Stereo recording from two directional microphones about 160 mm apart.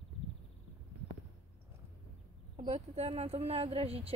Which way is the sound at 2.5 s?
40° right (ahead or behind).